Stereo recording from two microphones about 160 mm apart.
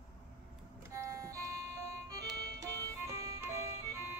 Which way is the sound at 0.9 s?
20° right (ahead or behind).